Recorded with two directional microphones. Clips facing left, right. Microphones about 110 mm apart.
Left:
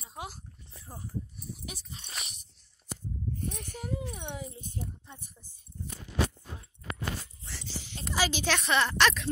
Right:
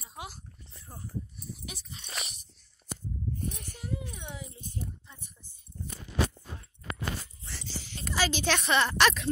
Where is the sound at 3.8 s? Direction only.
50° left (ahead or behind).